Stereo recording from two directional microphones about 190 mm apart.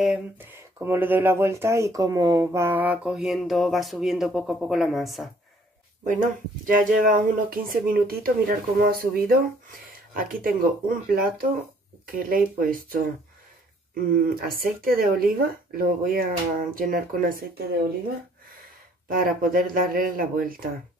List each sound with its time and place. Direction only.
0.0 s speech: 5° right (ahead or behind)
6.0 s speech: 45° right (ahead or behind)
19.0 s speech: 50° right (ahead or behind)